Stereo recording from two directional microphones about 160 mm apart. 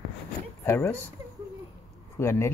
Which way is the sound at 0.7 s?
15° left (ahead or behind).